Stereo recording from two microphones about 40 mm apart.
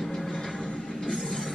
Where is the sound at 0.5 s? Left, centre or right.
Left.